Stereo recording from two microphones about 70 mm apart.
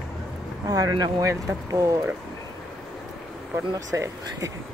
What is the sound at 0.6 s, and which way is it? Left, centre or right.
Speech, right.